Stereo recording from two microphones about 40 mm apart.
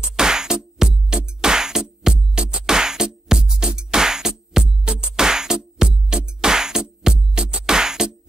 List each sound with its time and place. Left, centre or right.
0.1 s music: centre